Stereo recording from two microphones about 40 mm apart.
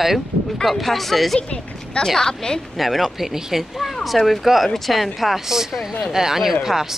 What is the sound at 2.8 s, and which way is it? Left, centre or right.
Speech, centre.